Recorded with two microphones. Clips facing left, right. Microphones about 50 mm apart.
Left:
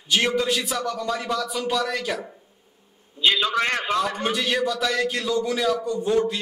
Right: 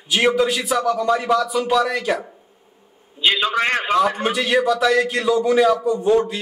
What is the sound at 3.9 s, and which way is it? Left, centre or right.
A man's voice, centre.